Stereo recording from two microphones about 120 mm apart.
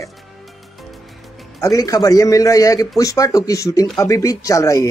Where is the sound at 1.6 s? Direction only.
25° left (ahead or behind).